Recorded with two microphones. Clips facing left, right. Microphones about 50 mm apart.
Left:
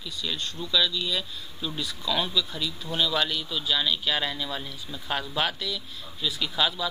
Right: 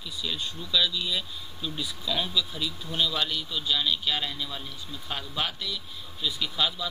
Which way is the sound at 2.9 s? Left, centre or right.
Centre.